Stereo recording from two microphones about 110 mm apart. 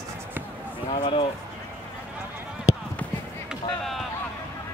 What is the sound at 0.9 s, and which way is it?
Speech, 45° left (ahead or behind).